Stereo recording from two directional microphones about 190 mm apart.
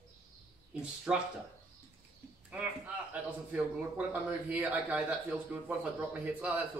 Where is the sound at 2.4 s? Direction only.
5° right (ahead or behind).